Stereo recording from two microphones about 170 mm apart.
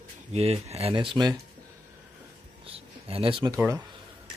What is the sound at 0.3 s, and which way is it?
Speech, 35° right (ahead or behind).